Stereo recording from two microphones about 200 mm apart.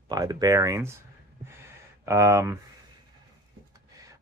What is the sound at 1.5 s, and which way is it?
Gasp, 15° right (ahead or behind).